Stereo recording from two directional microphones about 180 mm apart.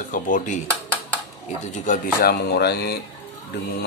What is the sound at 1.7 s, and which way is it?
Speech, 45° left (ahead or behind).